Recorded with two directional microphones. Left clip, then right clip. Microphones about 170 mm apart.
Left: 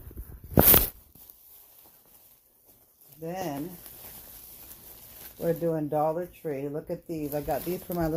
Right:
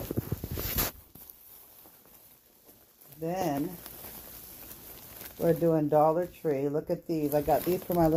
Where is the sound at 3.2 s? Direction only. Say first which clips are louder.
Right 3 dB; 25° right (ahead or behind); by 5.6 s 45° right (ahead or behind).